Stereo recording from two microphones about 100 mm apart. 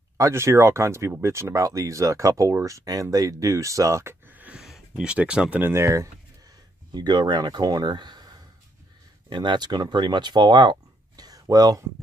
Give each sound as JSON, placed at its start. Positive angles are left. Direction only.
{"t": 0.2, "sound": "speech", "side_deg": -25}
{"t": 4.6, "sound": "speech", "side_deg": -5}
{"t": 5.6, "sound": "speech", "side_deg": -25}
{"t": 6.9, "sound": "speech", "side_deg": -45}
{"t": 9.3, "sound": "speech", "side_deg": -50}